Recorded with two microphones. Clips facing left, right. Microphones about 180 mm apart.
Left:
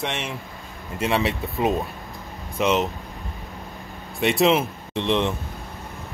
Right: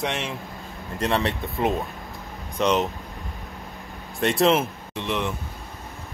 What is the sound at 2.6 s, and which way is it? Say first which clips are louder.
Speech: left 1 dB; 5° left (ahead or behind).